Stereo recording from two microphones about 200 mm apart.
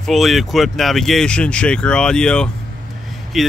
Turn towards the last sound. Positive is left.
turn(degrees=0)  # may be behind; listen again after turning